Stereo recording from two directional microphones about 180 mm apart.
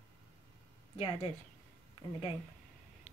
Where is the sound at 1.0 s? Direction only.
30° left (ahead or behind).